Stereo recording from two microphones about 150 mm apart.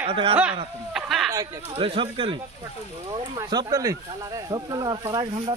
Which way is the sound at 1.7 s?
40° right (ahead or behind).